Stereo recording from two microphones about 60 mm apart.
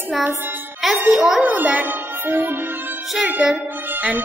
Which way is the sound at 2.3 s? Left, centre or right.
Right.